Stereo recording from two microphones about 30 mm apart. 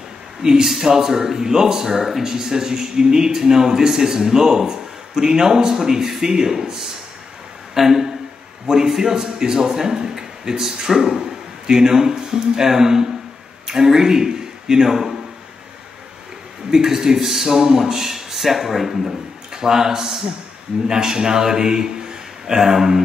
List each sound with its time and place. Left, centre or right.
0.4 s a man's voice: centre
16.7 s speech: centre
19.0 s a man's voice: centre